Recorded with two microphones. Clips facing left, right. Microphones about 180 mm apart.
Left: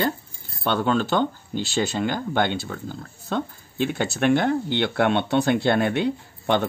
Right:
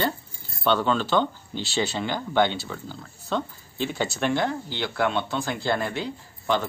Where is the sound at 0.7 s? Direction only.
50° left (ahead or behind).